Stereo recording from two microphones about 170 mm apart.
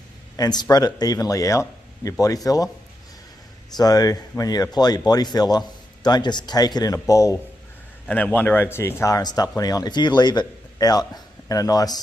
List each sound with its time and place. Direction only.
0.4 s speech: 25° left (ahead or behind)
3.7 s speech: 20° left (ahead or behind)
8.1 s a man's voice: 10° left (ahead or behind)